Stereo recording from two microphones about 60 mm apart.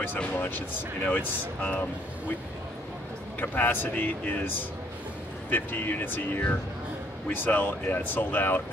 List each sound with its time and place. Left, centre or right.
0.2 s speech: left
3.3 s speech: left